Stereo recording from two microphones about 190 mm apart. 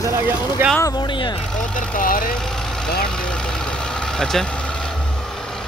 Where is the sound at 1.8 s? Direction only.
45° left (ahead or behind).